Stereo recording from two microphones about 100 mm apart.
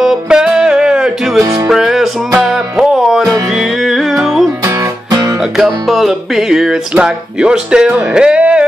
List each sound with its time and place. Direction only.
0.0 s music: 5° right (ahead or behind)
1.4 s music: 35° right (ahead or behind)
1.7 s music: 5° right (ahead or behind)
4.6 s music: 35° right (ahead or behind)
5.4 s music: centre (ahead or behind)